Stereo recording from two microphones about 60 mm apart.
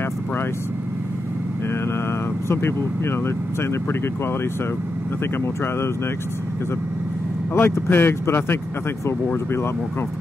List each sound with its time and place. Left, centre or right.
2.4 s speech: left
7.5 s speech: left